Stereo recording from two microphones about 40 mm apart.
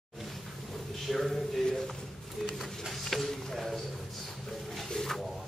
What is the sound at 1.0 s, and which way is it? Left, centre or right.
Speech, centre.